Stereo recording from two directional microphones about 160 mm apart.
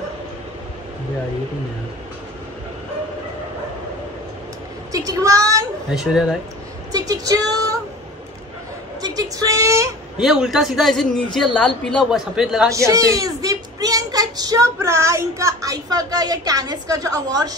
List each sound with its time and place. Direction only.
4.9 s speech: 20° right (ahead or behind)
5.9 s a man's voice: 5° right (ahead or behind)
6.9 s speech: 25° right (ahead or behind)
9.0 s speech: 25° right (ahead or behind)
10.1 s a man's voice: centre (ahead or behind)
12.7 s speech: 20° right (ahead or behind)